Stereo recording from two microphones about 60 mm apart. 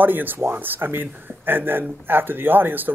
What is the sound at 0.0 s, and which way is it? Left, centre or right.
Speech, right.